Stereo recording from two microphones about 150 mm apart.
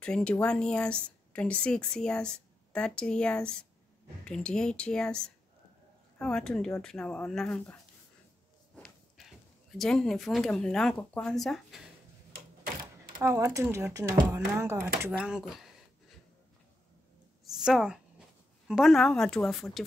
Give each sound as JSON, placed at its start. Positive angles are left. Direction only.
{"t": 0.0, "sound": "speech", "side_deg": 5}
{"t": 8.7, "sound": "speech", "side_deg": 5}
{"t": 13.2, "sound": "speech", "side_deg": -20}
{"t": 15.1, "sound": "speech", "side_deg": -5}
{"t": 17.6, "sound": "a woman's voice", "side_deg": -5}